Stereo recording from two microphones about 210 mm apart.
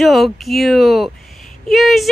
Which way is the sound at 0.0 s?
Centre (ahead or behind).